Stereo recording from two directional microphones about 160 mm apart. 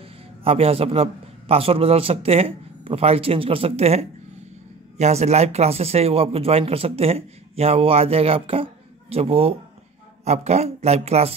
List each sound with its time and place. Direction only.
0.4 s speech: 35° right (ahead or behind)